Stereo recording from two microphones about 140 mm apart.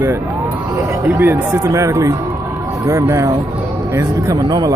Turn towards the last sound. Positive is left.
turn(degrees=-20)  # may be behind; listen again after turning